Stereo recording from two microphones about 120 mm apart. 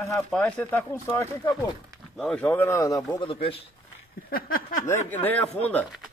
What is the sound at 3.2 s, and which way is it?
Speech, 50° left (ahead or behind).